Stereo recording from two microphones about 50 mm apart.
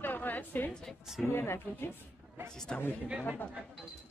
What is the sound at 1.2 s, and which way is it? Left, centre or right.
Speech, left.